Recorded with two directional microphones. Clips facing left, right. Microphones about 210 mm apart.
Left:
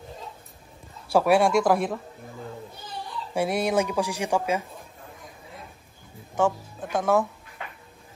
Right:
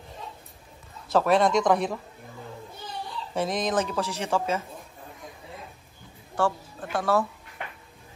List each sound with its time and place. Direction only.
1.0 s a woman's voice: 10° left (ahead or behind)
3.3 s a woman's voice: 10° left (ahead or behind)
6.3 s a woman's voice: 20° left (ahead or behind)